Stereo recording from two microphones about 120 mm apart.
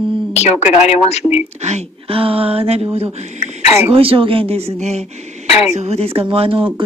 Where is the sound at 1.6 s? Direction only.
60° right (ahead or behind).